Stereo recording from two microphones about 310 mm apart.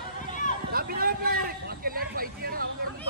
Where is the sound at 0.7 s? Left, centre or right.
Right.